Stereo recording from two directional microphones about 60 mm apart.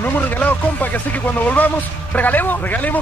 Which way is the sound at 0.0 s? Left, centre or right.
Left.